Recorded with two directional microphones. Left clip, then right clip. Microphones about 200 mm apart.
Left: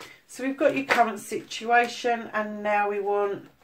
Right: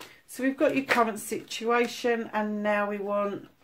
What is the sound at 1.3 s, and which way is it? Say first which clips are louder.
Speech: left 4 dB; 50° right (ahead or behind).